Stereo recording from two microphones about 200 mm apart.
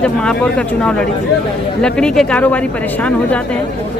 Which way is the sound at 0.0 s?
5° left (ahead or behind).